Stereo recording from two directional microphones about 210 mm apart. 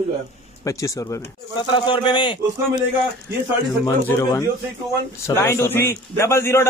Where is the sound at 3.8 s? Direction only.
15° left (ahead or behind).